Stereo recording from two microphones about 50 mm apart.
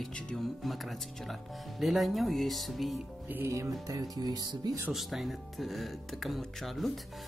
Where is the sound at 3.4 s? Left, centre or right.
Right.